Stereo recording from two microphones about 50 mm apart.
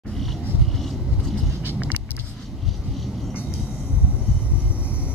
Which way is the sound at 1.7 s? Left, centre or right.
Right.